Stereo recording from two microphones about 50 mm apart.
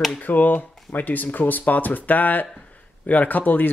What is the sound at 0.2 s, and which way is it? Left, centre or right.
Speech, left.